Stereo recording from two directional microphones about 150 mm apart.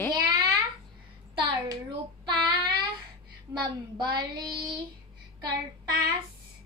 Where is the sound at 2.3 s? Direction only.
30° right (ahead or behind).